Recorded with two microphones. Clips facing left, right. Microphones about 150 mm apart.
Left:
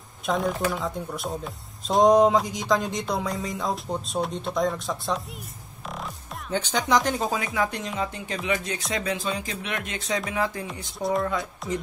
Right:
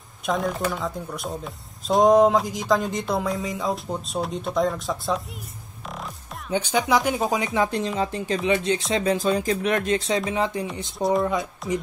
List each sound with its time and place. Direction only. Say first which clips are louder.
0.3 s speech: even; centre (ahead or behind)
5.9 s music: even; centre (ahead or behind)
6.5 s speech: right 2 dB; 10° right (ahead or behind)
7.2 s speech: right 3 dB; 20° right (ahead or behind)
11.6 s speech: right 3 dB; centre (ahead or behind)